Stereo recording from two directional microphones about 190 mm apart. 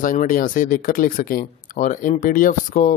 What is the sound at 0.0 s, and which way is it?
Speech, 45° left (ahead or behind).